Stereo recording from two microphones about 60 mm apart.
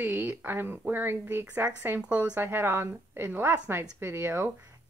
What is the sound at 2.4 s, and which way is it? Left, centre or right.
A woman's voice, right.